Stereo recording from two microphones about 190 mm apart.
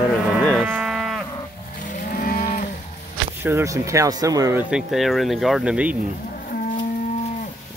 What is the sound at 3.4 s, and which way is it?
Speech, 15° right (ahead or behind).